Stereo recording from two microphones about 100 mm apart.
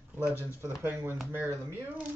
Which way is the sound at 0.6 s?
20° right (ahead or behind).